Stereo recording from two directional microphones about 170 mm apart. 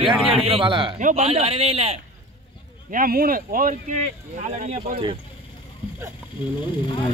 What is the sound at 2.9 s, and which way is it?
Speech, 55° right (ahead or behind).